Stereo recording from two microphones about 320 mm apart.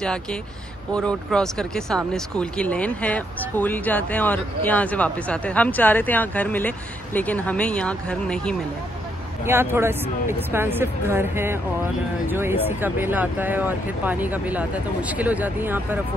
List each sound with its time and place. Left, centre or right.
0.0 s speech: centre